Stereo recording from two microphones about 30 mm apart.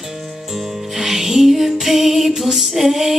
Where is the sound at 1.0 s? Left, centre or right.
Centre.